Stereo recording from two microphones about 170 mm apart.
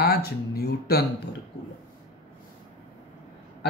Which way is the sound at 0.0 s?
70° left (ahead or behind).